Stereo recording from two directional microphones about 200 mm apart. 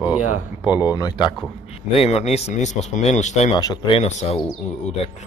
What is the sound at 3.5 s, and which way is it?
Speech, 20° left (ahead or behind).